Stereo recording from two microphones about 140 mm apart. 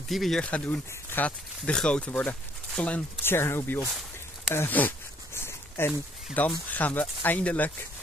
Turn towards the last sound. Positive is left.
turn(degrees=10)  # may be behind; listen again after turning